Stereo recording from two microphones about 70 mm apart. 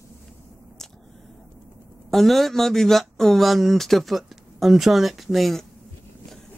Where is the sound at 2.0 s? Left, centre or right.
Centre.